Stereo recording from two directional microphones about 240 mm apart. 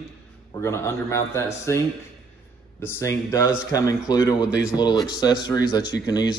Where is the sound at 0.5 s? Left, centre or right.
Centre.